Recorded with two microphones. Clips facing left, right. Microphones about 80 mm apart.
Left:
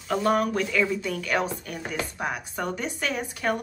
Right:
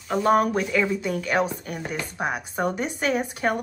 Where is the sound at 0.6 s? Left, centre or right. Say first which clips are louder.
Right 2 dB; right.